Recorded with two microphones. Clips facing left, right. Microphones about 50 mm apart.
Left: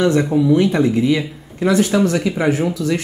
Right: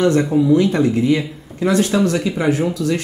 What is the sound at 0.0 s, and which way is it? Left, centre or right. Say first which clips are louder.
Speech: even; left.